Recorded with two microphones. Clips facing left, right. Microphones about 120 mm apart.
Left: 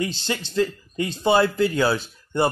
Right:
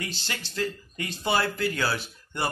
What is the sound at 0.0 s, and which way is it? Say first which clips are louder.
Speech: left 9 dB; 25° left (ahead or behind).